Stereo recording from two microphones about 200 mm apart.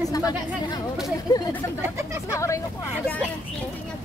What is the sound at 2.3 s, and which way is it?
Speech, 15° left (ahead or behind).